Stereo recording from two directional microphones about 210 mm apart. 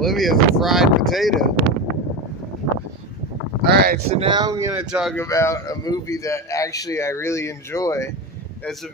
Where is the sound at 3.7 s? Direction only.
50° right (ahead or behind).